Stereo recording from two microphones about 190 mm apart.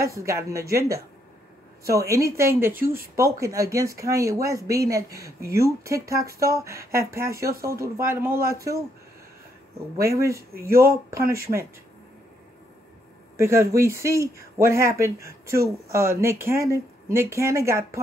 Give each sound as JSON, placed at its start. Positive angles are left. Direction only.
{"t": 0.0, "sound": "speech", "side_deg": -15}
{"t": 2.7, "sound": "speech", "side_deg": -50}
{"t": 3.3, "sound": "speech", "side_deg": -15}
{"t": 9.9, "sound": "speech", "side_deg": -15}
{"t": 13.4, "sound": "speech", "side_deg": -15}